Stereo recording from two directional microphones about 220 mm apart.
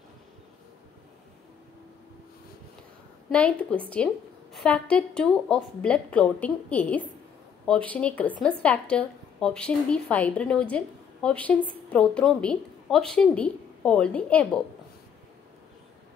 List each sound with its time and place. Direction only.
3.3 s a woman's voice: 5° left (ahead or behind)